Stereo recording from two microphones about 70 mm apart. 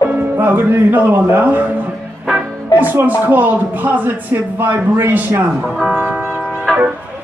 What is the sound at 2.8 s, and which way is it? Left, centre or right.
Speech, right.